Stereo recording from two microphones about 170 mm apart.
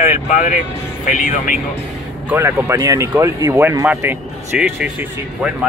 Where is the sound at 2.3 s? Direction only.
15° right (ahead or behind).